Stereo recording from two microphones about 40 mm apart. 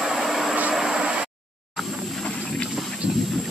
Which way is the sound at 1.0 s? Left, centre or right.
Right.